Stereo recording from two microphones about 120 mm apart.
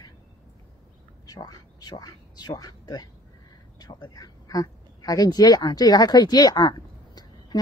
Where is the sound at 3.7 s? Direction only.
35° left (ahead or behind).